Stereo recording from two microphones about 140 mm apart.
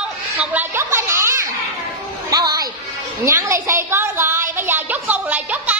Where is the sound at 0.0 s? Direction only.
10° right (ahead or behind).